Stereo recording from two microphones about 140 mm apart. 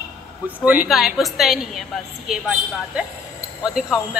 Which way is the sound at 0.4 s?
15° right (ahead or behind).